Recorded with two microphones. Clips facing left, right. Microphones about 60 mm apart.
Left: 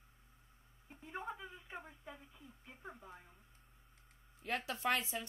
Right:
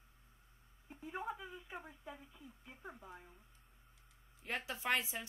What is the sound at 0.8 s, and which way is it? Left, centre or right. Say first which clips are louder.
A woman's voice: right 2 dB; centre.